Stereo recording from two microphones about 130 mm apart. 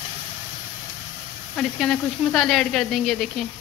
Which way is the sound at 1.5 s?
5° left (ahead or behind).